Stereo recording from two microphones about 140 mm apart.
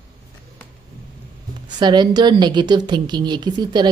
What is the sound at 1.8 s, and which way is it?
A woman's voice, 35° right (ahead or behind).